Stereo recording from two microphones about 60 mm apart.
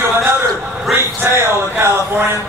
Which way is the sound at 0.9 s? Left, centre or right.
Right.